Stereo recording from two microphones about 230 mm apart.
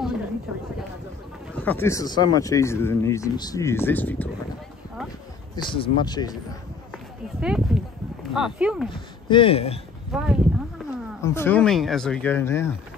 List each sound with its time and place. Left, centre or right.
1.5 s speech: centre
5.7 s speech: left
7.3 s a sound: centre
8.9 s speech: left
10.1 s speech: centre
10.8 s wild animals: centre
11.1 s speech: centre